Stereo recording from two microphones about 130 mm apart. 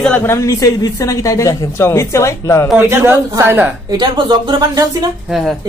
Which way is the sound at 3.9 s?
35° right (ahead or behind).